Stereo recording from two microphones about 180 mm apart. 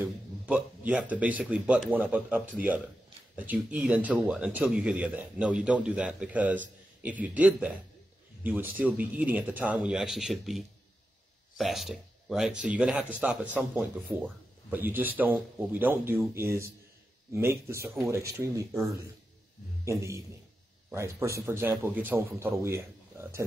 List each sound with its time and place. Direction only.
0.0 s a man's voice: 5° right (ahead or behind)
19.8 s a man's voice: 15° right (ahead or behind)